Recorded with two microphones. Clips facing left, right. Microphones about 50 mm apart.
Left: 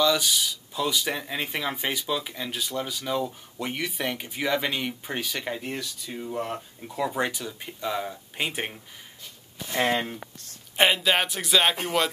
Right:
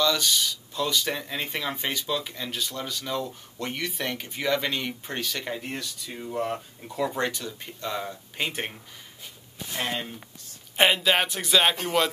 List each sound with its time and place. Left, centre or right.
0.0 s speech: centre
9.7 s speech: left
10.8 s speech: centre